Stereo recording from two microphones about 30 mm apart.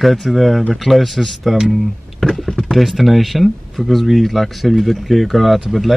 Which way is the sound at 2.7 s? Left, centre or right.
Centre.